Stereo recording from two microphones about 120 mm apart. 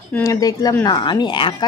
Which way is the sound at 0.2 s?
30° left (ahead or behind).